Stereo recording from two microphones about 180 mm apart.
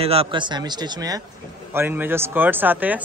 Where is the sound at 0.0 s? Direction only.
35° right (ahead or behind).